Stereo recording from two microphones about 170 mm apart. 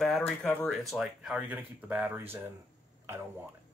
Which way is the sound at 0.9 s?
Centre (ahead or behind).